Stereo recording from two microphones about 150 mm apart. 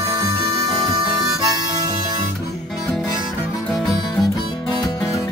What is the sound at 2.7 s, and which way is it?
Music, centre (ahead or behind).